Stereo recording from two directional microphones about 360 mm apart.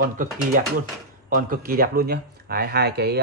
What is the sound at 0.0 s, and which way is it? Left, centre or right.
Speech, right.